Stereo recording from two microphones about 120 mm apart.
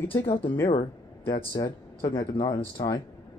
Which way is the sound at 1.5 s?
30° left (ahead or behind).